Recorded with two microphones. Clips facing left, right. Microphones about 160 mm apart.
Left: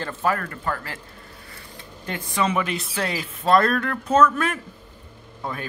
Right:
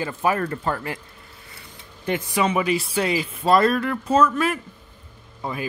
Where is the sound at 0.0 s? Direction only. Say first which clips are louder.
Right 2 dB; 15° right (ahead or behind).